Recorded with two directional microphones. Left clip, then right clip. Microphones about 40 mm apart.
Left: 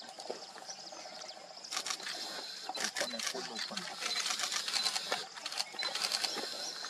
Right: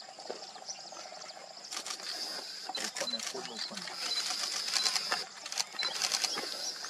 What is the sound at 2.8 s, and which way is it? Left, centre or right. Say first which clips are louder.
Cash register: left 1 dB; left.